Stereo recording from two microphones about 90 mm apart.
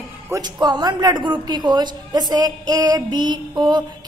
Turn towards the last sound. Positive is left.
turn(degrees=-55)  # may be behind; listen again after turning